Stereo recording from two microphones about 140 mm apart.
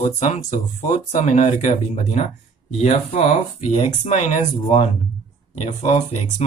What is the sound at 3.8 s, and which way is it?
Speech, 55° left (ahead or behind).